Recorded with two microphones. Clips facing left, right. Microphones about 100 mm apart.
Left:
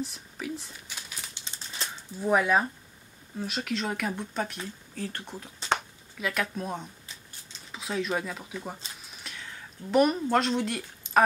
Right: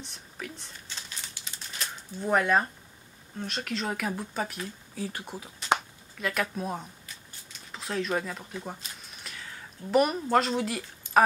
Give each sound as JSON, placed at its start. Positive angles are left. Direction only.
{"t": 0.0, "sound": "a sound", "side_deg": 0}
{"t": 1.3, "sound": "crumpling", "side_deg": 30}
{"t": 2.0, "sound": "speech", "side_deg": 5}